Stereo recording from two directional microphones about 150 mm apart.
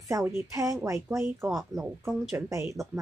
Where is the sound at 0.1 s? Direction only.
20° right (ahead or behind).